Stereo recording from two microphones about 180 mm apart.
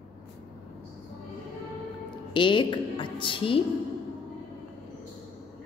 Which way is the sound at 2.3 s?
25° left (ahead or behind).